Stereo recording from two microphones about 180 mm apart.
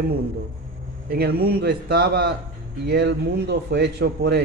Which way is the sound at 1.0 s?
60° right (ahead or behind).